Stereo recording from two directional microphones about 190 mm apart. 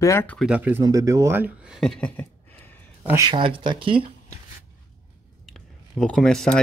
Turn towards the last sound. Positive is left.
turn(degrees=0)  # may be behind; listen again after turning